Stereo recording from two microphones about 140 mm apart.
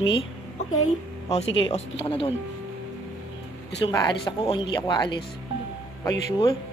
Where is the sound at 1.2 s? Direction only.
50° left (ahead or behind).